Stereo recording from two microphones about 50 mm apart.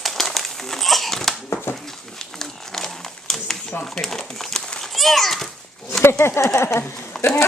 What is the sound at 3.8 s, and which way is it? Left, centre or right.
Speech, centre.